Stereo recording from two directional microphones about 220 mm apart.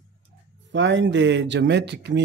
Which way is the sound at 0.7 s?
55° right (ahead or behind).